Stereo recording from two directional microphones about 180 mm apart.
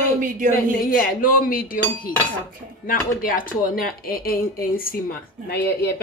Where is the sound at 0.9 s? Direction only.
50° left (ahead or behind).